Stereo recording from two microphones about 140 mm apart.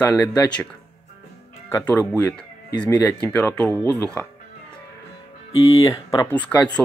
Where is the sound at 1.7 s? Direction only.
10° left (ahead or behind).